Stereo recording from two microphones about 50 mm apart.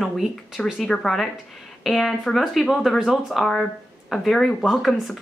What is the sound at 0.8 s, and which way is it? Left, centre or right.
A woman's voice, centre.